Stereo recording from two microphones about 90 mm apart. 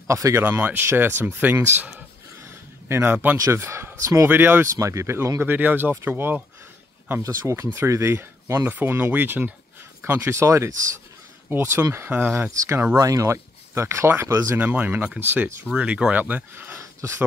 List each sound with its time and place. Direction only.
0.1 s speech: 35° right (ahead or behind)
0.5 s speech: 20° right (ahead or behind)
2.4 s a sound: 30° right (ahead or behind)
3.3 s speech: 35° right (ahead or behind)
7.2 s speech: 35° right (ahead or behind)
14.6 s speech: 15° right (ahead or behind)
15.7 s speech: 10° right (ahead or behind); by 17.2 s 30° right (ahead or behind)